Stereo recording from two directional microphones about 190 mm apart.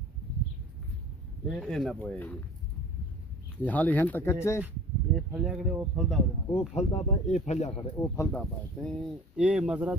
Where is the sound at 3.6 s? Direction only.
10° left (ahead or behind).